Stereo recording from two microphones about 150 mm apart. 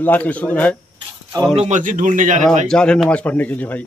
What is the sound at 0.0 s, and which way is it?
Speech, 10° left (ahead or behind).